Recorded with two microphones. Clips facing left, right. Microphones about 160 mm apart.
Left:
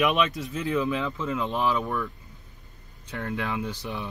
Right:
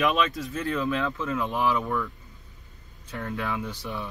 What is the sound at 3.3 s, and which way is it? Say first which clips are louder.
Speech: left 1 dB; 20° left (ahead or behind).